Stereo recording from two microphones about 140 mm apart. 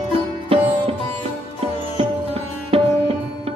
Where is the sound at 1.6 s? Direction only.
45° right (ahead or behind).